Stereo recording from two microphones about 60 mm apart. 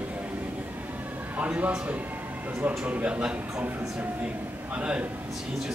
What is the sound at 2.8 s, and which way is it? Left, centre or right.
Speech, right.